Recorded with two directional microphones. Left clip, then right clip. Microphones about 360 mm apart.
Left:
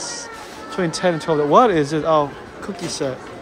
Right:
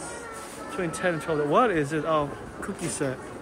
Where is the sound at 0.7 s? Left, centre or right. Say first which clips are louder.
Left 8 dB; centre.